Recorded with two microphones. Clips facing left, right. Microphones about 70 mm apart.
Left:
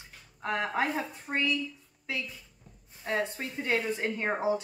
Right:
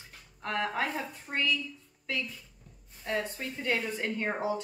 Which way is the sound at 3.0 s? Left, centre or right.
Left.